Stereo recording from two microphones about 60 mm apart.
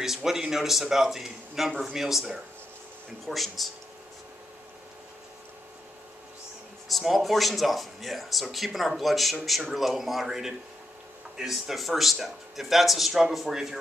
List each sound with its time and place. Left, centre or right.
0.0 s speech: centre
6.9 s speech: centre